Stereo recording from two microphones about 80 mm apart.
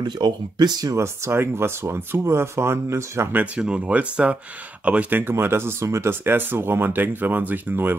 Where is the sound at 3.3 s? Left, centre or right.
Centre.